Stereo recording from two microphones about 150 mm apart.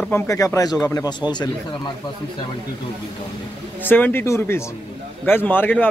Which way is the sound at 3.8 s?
15° left (ahead or behind).